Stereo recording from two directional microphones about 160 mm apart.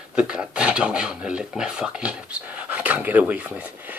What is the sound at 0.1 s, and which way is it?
Speech, 5° right (ahead or behind).